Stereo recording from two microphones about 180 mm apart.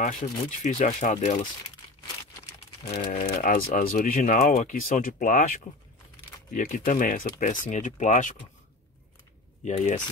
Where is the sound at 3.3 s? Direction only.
55° left (ahead or behind).